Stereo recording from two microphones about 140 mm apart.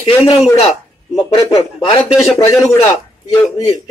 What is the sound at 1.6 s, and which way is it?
Speech, 45° left (ahead or behind).